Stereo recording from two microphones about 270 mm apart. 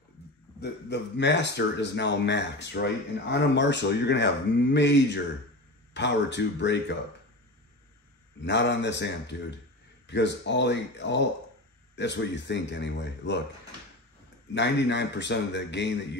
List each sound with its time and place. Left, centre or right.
0.6 s speech: left
8.5 s speech: left
14.5 s speech: left